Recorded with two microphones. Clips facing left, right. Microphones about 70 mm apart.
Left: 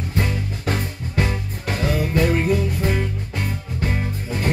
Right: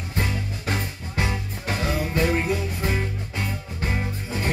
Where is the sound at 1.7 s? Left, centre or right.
Left.